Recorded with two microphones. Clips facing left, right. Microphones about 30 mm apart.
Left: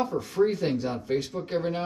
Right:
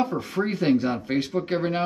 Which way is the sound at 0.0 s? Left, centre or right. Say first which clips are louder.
Left 1 dB; right.